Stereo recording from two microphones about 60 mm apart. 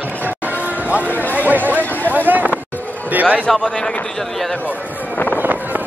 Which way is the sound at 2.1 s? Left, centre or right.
Right.